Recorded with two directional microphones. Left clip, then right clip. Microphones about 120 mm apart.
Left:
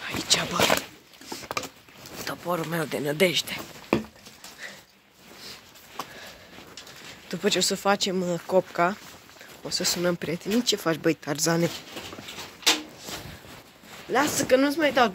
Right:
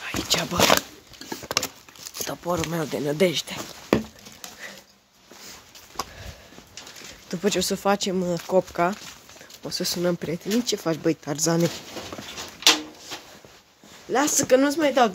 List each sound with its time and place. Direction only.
0.0 s a sound: 25° right (ahead or behind)
0.6 s speech: 5° right (ahead or behind)
1.3 s a sound: 40° right (ahead or behind)
2.4 s speech: 10° right (ahead or behind)
7.2 s speech: 20° right (ahead or behind)
14.1 s speech: 10° right (ahead or behind)